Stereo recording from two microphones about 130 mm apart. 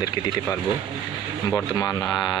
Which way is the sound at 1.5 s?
30° left (ahead or behind).